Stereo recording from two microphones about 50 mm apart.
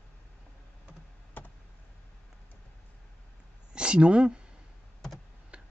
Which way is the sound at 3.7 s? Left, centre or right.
Centre.